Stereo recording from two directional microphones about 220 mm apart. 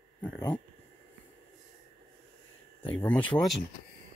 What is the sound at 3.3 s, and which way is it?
Speech, 15° left (ahead or behind).